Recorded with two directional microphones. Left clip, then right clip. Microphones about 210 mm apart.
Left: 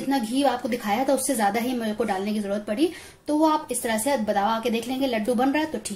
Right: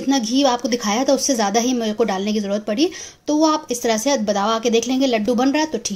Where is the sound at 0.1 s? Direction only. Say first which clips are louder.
Right 6 dB; 40° right (ahead or behind).